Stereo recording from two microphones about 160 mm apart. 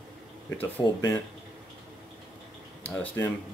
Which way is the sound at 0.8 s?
20° left (ahead or behind).